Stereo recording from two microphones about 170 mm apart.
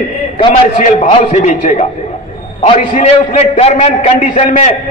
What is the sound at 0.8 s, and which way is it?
A man's voice, 50° left (ahead or behind).